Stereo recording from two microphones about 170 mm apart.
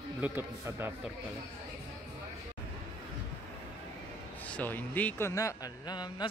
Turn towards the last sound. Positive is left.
turn(degrees=25)  # may be behind; listen again after turning